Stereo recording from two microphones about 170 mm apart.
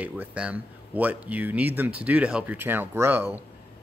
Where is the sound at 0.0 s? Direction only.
10° right (ahead or behind).